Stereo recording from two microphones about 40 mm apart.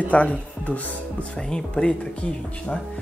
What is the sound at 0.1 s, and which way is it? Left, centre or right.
Speech, left.